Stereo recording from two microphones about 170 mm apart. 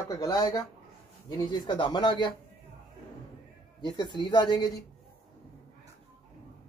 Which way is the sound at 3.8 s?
25° left (ahead or behind).